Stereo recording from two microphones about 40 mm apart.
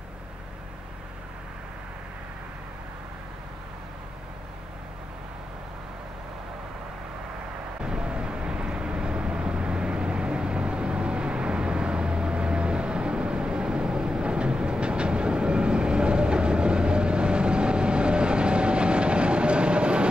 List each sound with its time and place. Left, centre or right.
7.8 s vehicle: right